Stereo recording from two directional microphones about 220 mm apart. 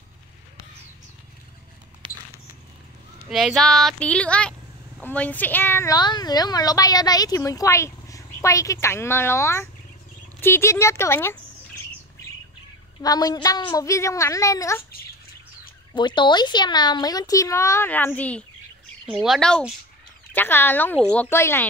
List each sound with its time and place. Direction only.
3.3 s a woman's voice: centre (ahead or behind)
13.0 s a woman's voice: 15° left (ahead or behind)
15.9 s a woman's voice: 20° left (ahead or behind)